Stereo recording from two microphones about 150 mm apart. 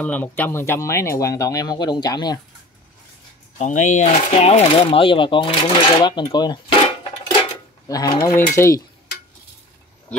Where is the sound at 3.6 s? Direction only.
55° left (ahead or behind); by 6.7 s 30° left (ahead or behind).